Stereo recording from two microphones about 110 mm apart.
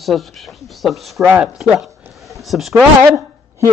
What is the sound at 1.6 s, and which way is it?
Speech, centre (ahead or behind).